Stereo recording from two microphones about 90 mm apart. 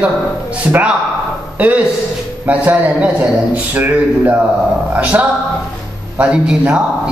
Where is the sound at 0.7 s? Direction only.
20° right (ahead or behind).